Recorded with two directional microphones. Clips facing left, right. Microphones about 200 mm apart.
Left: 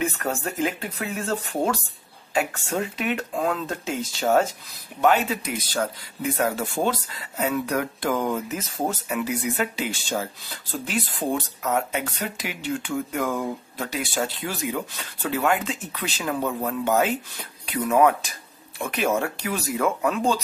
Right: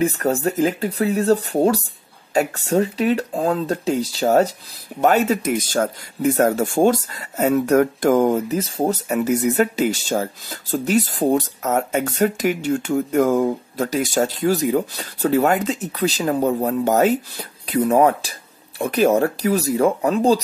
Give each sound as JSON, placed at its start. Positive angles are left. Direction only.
{"t": 0.0, "sound": "speech", "side_deg": -35}